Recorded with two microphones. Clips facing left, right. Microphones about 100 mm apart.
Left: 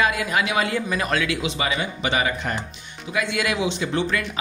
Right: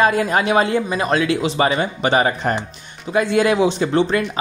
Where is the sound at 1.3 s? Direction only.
40° right (ahead or behind).